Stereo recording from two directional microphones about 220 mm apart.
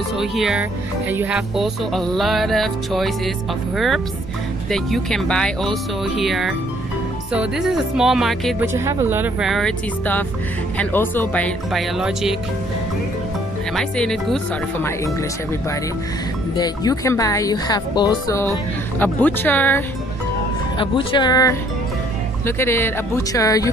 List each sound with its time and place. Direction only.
0.2 s music: centre (ahead or behind)
8.7 s music: 10° right (ahead or behind)
13.7 s music: 5° left (ahead or behind)
16.5 s a woman's voice: 15° left (ahead or behind)
20.7 s speech: 25° left (ahead or behind)
22.6 s a woman's voice: 10° left (ahead or behind)